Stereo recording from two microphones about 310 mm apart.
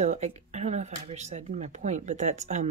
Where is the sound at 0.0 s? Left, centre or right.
Right.